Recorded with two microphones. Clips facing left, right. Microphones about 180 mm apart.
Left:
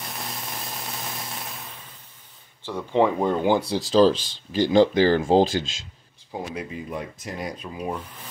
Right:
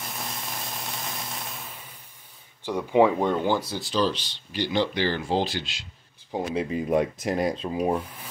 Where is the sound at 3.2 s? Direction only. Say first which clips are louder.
Left 1 dB; 5° left (ahead or behind).